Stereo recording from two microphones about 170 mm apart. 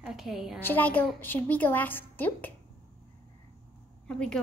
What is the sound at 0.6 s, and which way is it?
A woman's voice, 10° left (ahead or behind).